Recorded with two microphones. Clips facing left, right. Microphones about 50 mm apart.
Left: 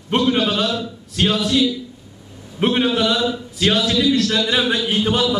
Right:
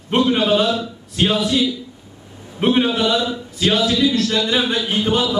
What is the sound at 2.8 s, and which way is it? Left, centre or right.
A man's voice, centre.